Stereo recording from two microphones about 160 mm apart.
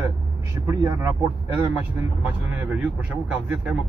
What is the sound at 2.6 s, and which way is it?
Speech, 10° right (ahead or behind).